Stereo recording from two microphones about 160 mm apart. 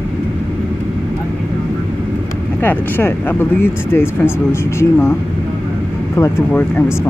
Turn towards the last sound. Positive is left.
turn(degrees=10)  # may be behind; listen again after turning